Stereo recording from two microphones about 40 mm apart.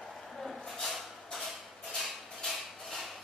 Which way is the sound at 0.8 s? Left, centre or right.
Centre.